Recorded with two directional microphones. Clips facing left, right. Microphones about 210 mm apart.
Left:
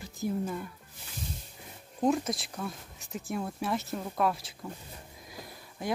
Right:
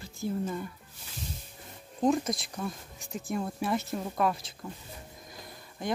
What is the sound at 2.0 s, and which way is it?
Speech, 5° left (ahead or behind).